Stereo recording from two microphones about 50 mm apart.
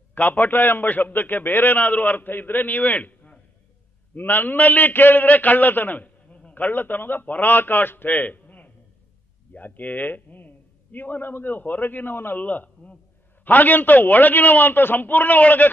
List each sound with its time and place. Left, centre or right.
0.1 s a man's voice: left
12.4 s a man's voice: left